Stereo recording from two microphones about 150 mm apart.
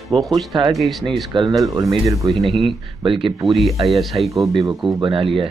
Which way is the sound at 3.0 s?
35° right (ahead or behind).